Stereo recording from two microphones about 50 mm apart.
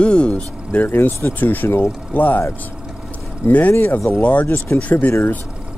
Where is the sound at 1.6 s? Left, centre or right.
Left.